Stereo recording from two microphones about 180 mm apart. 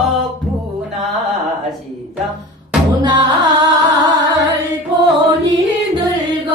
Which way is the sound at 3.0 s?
20° right (ahead or behind).